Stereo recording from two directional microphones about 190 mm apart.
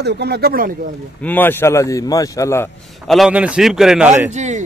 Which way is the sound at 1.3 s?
10° left (ahead or behind).